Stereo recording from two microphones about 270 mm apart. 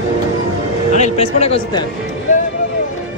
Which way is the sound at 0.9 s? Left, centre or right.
Left.